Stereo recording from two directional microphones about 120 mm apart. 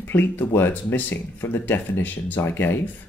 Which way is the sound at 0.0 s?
15° left (ahead or behind).